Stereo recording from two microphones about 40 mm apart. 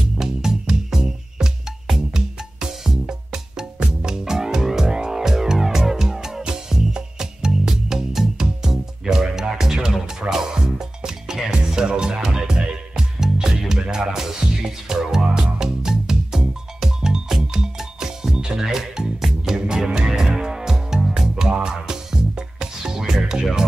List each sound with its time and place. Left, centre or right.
0.2 s music: centre